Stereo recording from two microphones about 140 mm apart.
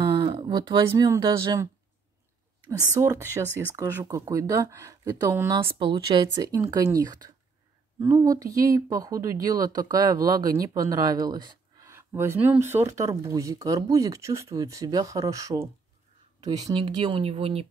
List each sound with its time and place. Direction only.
0.2 s speech: 40° right (ahead or behind)
2.6 s speech: 20° right (ahead or behind)
5.8 s speech: 35° right (ahead or behind)
11.9 s speech: 20° right (ahead or behind); by 17.6 s 45° right (ahead or behind)